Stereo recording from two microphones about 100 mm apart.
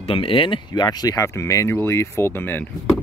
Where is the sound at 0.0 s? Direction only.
70° left (ahead or behind); by 2.7 s 20° left (ahead or behind).